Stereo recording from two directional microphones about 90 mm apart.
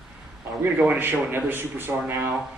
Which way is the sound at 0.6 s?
20° right (ahead or behind).